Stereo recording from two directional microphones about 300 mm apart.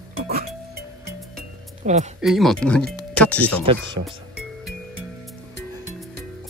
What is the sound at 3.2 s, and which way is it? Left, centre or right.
Music, centre.